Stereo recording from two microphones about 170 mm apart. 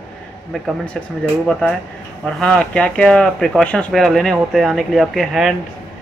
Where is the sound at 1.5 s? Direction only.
5° left (ahead or behind).